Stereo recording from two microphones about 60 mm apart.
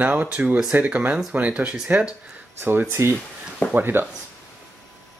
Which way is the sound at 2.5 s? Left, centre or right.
Right.